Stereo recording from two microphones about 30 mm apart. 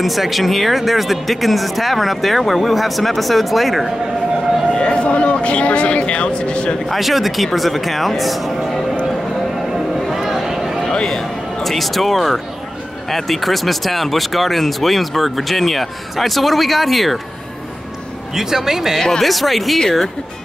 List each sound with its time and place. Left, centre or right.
0.0 s speech: centre
4.7 s speech: left
6.9 s speech: centre
10.1 s a sound: centre
11.6 s speech: centre
18.3 s speech: centre
19.2 s speech: centre